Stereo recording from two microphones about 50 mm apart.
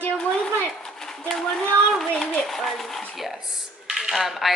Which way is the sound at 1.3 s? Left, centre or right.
Centre.